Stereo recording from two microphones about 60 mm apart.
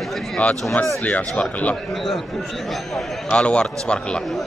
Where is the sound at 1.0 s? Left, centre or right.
Left.